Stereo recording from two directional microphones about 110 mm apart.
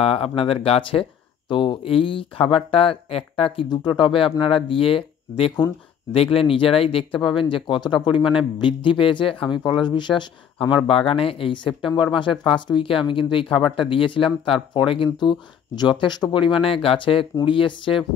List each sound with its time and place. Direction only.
0.0 s speech: 60° left (ahead or behind)
3.6 s speech: 40° left (ahead or behind)
9.6 s speech: 40° left (ahead or behind)
10.9 s speech: 55° left (ahead or behind)